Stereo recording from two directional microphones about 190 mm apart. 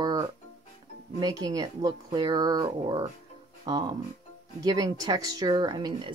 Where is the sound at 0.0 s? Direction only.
20° right (ahead or behind).